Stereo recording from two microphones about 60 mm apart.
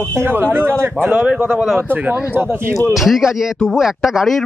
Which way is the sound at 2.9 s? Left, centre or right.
Centre.